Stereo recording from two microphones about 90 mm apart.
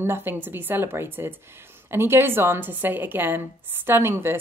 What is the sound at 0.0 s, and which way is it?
Speech, 25° right (ahead or behind).